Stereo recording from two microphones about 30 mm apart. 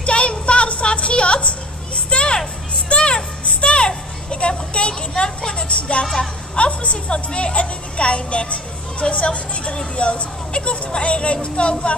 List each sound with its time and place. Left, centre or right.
0.0 s music: left
3.6 s a sound: left
5.8 s speech: left